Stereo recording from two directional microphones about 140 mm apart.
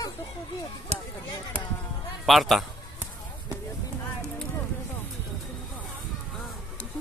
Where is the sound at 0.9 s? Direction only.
50° right (ahead or behind).